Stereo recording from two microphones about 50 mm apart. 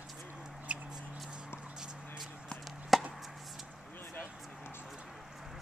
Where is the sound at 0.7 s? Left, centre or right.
Right.